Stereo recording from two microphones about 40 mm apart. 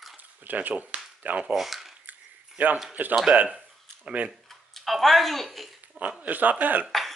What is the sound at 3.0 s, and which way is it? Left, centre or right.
Speech, right.